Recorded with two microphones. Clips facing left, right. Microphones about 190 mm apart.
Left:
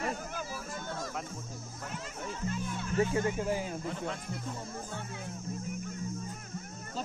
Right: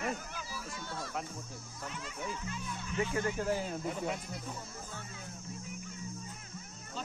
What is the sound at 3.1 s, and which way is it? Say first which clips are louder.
Speech: left 2 dB; 20° left (ahead or behind).